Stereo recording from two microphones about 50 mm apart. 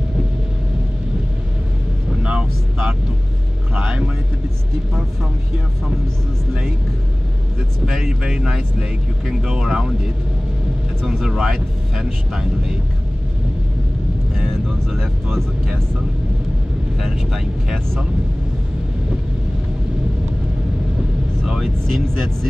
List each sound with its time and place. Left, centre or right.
2.2 s vehicle: centre
3.7 s music: right
7.8 s speech: centre
11.2 s speech: centre
14.3 s speech: centre
17.0 s speech: centre
21.5 s speech: centre